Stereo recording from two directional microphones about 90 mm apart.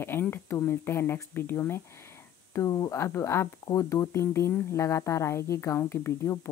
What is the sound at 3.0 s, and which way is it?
A woman's voice, 30° left (ahead or behind).